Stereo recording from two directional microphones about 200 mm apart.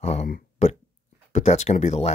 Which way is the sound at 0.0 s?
30° left (ahead or behind).